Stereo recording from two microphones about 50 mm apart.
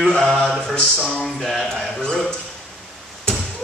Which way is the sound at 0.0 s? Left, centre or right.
Centre.